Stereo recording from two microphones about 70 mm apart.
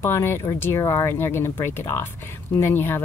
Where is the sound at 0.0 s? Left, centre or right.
Left.